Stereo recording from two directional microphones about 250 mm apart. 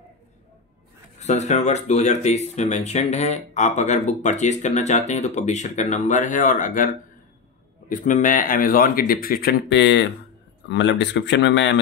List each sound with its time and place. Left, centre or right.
1.2 s speech: left
7.9 s speech: left